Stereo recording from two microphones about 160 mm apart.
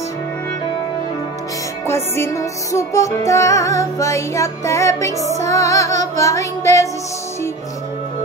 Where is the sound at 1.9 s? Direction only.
15° left (ahead or behind).